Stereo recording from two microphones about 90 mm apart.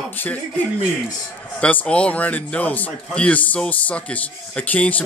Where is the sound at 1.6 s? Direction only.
15° left (ahead or behind).